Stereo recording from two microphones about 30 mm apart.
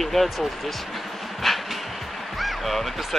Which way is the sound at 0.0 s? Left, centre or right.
Centre.